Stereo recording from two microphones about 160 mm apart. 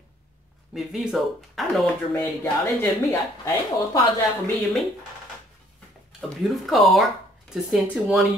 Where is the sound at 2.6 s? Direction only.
20° left (ahead or behind).